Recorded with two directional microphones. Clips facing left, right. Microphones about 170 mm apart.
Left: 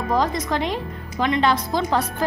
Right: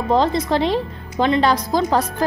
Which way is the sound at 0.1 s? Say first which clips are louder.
Right 5 dB; 30° right (ahead or behind).